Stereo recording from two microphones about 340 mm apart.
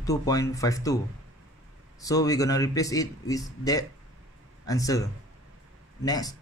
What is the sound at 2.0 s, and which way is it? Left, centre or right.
Speech, centre.